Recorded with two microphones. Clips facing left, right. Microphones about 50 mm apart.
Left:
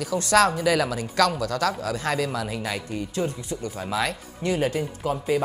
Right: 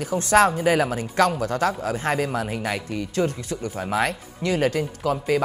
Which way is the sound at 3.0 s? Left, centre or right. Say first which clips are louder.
Right 5 dB; right.